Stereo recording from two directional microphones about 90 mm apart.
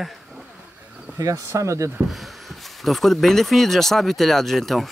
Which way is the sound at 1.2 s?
35° right (ahead or behind).